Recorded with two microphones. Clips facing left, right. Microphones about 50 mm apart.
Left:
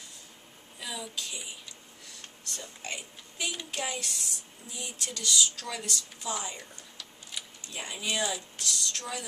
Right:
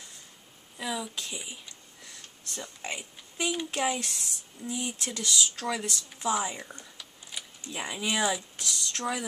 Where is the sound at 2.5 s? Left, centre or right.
Centre.